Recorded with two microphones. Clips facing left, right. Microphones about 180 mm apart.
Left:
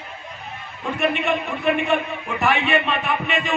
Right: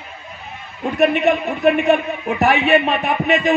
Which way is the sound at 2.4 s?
40° right (ahead or behind).